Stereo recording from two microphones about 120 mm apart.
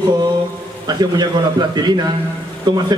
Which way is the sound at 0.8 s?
35° right (ahead or behind).